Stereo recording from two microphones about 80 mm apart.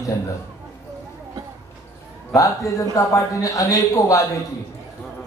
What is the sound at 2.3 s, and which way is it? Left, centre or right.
A man's voice, left.